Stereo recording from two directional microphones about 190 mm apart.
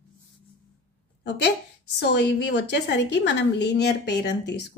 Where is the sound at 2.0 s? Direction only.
60° left (ahead or behind).